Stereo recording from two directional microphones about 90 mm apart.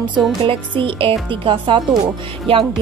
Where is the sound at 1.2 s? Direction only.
65° right (ahead or behind).